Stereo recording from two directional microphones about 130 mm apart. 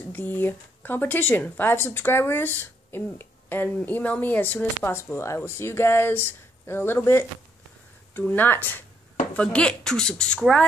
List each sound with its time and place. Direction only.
0.1 s speech: 15° left (ahead or behind)